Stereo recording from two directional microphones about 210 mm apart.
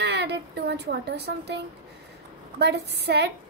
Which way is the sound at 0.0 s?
50° right (ahead or behind).